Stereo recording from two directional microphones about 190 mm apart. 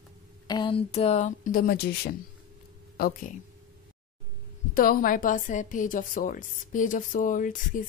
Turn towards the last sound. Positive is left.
turn(degrees=45)  # may be behind; listen again after turning